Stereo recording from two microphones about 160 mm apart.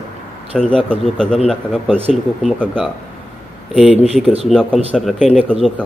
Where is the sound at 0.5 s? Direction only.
5° left (ahead or behind).